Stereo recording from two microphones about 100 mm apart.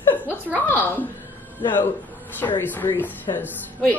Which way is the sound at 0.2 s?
15° left (ahead or behind).